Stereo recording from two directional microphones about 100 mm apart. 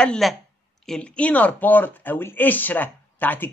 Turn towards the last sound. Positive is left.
turn(degrees=20)  # may be behind; listen again after turning